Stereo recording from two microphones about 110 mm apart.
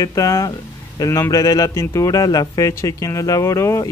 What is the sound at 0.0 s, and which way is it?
Speech, 30° left (ahead or behind).